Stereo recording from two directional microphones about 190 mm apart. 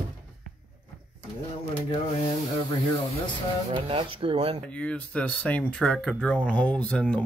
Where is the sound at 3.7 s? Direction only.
25° right (ahead or behind).